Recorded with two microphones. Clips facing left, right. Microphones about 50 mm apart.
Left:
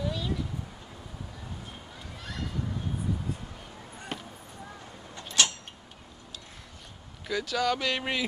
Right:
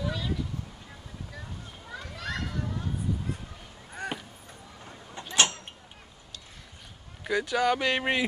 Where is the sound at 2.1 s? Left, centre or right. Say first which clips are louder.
Right 6 dB; right.